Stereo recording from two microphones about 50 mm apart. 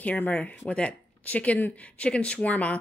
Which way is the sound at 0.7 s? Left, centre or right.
Left.